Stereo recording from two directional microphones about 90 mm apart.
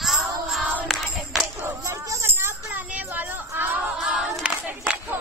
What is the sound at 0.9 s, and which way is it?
Music, centre (ahead or behind).